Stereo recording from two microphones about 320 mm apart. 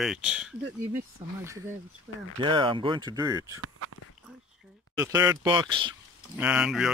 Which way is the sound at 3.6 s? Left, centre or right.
Right.